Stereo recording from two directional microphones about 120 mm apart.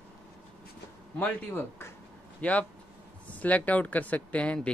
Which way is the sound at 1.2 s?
20° left (ahead or behind).